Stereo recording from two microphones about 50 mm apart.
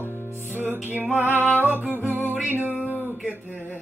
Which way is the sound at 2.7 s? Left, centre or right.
Left.